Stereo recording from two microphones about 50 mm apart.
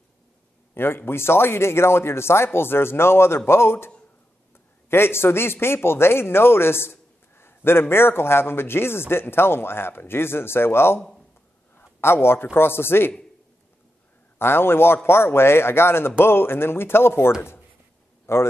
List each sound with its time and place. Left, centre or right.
0.7 s a man's voice: left
11.0 s speech: centre
11.7 s a sound: left
12.5 s a man's voice: left
14.4 s a man's voice: left
18.2 s a sound: left